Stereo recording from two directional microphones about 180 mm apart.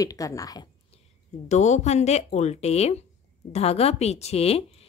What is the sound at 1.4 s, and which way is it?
Speech, 40° left (ahead or behind).